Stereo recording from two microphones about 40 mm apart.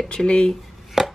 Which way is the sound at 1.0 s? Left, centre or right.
Centre.